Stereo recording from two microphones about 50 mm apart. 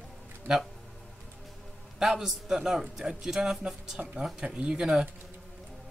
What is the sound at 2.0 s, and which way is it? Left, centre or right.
Speech, centre.